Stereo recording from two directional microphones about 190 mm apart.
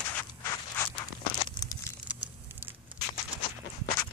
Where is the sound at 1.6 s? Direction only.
20° left (ahead or behind).